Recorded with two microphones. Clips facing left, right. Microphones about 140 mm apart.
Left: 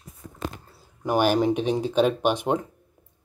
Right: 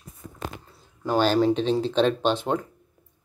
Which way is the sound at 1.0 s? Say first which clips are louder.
Even; 15° left (ahead or behind).